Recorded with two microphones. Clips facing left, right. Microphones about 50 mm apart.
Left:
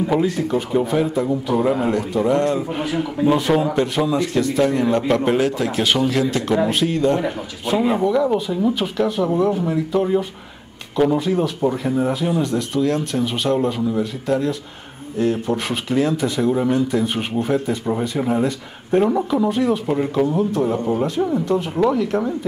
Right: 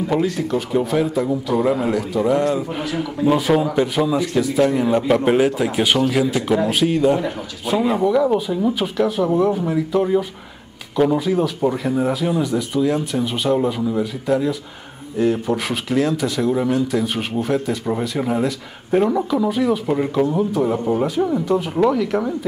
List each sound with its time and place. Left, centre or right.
0.1 s speech: centre
0.5 s speech: centre
2.8 s speech: centre
3.3 s a man's voice: centre
7.6 s speech: centre